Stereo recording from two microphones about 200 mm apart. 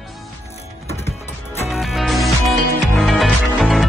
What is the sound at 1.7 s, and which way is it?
Music, centre (ahead or behind).